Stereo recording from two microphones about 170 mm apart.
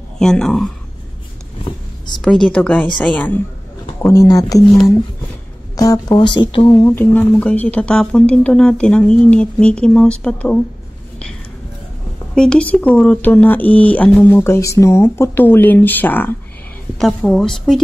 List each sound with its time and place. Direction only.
0.2 s speech: 5° left (ahead or behind)
2.2 s speech: 5° left (ahead or behind)
4.1 s speech: 20° left (ahead or behind)
5.8 s speech: 20° left (ahead or behind)
6.7 s speech: 15° left (ahead or behind)
12.4 s speech: 5° left (ahead or behind)